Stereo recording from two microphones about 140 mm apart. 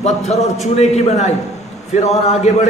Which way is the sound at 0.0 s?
50° left (ahead or behind).